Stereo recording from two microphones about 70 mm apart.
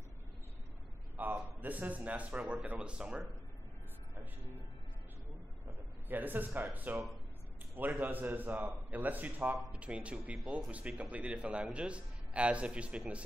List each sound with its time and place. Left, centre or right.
1.1 s a man's voice: right
5.7 s a man's voice: right